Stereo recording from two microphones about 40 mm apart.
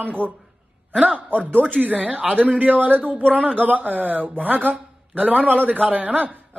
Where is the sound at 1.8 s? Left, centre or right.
Right.